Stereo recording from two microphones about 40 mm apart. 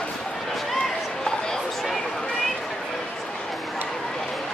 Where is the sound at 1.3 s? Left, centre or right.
Centre.